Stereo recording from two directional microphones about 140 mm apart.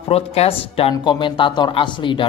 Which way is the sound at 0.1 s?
45° left (ahead or behind).